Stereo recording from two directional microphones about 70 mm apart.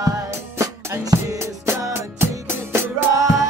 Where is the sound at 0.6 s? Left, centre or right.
Right.